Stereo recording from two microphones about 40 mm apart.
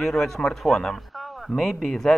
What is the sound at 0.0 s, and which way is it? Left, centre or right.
Speech, centre.